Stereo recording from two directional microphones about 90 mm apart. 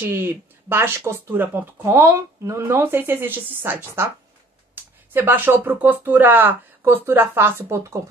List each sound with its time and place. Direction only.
0.0 s speech: 25° right (ahead or behind)